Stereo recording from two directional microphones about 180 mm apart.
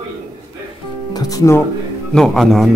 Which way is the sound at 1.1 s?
20° left (ahead or behind).